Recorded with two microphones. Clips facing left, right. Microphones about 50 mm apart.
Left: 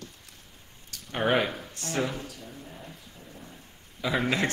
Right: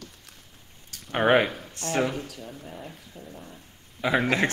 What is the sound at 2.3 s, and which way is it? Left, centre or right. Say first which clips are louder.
Speech: right 3 dB; right.